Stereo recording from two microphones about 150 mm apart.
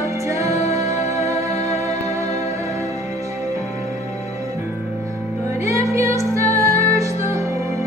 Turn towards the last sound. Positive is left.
turn(degrees=-20)  # may be behind; listen again after turning